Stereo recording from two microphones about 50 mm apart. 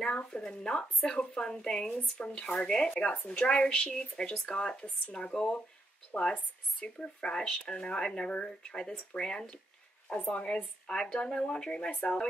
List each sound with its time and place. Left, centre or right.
0.0 s a woman's voice: centre